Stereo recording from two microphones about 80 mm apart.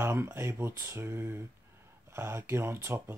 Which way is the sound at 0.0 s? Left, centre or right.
Right.